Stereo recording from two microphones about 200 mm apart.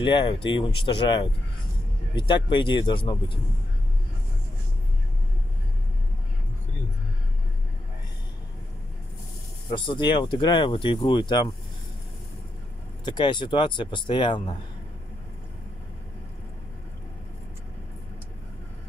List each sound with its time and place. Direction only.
0.0 s speech: 25° left (ahead or behind)
9.7 s speech: 25° left (ahead or behind)
13.0 s speech: 25° left (ahead or behind)